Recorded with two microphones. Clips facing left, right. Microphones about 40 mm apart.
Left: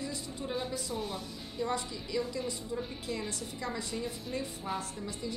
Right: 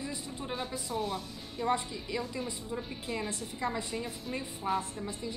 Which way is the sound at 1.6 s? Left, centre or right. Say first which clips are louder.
Right 3 dB; right.